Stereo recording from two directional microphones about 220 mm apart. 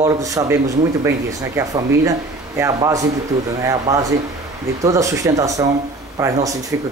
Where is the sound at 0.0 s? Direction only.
15° right (ahead or behind).